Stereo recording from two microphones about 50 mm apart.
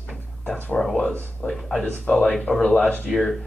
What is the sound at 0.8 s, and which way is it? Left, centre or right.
Speech, centre.